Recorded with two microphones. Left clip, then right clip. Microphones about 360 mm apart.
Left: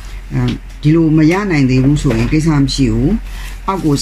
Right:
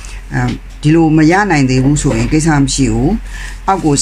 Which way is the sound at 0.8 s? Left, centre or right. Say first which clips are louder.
Right 2 dB; centre.